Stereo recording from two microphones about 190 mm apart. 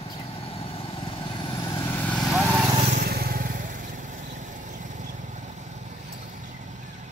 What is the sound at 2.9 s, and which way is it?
Vehicle, 55° right (ahead or behind).